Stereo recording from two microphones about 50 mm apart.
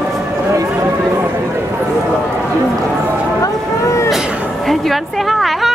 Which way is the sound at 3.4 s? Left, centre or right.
Left.